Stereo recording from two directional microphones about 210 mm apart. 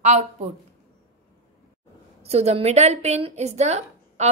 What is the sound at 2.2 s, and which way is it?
A woman's voice, 30° right (ahead or behind).